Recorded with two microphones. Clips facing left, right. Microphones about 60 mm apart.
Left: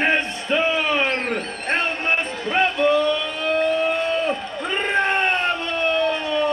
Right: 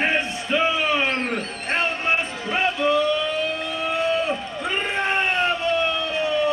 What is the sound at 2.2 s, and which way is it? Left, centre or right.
Vehicle, left.